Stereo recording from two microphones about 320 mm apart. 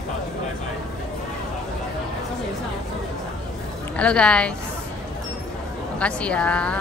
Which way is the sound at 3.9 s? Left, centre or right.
Centre.